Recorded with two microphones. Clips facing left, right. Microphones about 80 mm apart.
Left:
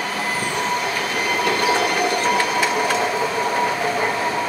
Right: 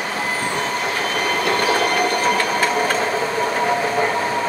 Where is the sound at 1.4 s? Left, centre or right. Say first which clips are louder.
Right 1 dB; right.